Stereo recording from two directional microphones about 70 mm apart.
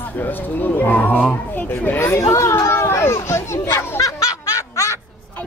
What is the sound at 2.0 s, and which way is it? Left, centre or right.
Speech, left.